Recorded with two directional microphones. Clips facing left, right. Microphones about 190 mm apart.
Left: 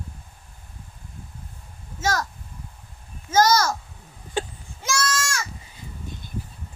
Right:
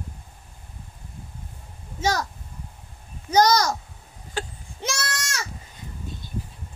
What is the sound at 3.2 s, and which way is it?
Speech, 15° right (ahead or behind).